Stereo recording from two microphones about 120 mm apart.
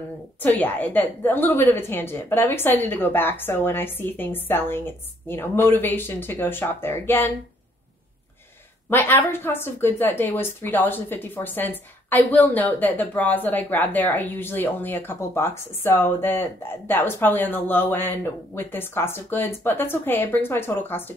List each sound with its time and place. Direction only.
0.4 s a woman's voice: 15° left (ahead or behind)
8.9 s a woman's voice: 20° left (ahead or behind)